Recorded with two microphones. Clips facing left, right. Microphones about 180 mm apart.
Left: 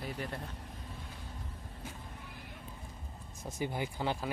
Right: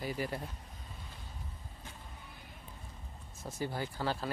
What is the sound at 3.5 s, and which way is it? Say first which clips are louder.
Speech: left 1 dB; 15° left (ahead or behind).